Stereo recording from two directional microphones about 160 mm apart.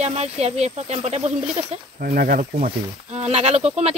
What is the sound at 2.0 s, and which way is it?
Speech, 65° right (ahead or behind).